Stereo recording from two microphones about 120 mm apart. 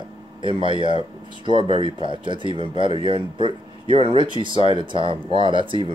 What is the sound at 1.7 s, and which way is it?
Speech, 60° left (ahead or behind).